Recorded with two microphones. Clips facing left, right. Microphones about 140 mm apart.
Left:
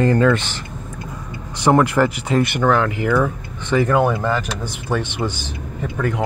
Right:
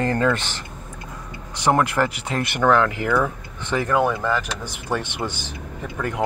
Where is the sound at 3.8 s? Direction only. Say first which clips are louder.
Left 1 dB; 25° left (ahead or behind).